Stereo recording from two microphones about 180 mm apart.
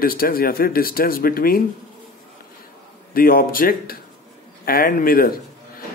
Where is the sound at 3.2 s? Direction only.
55° left (ahead or behind).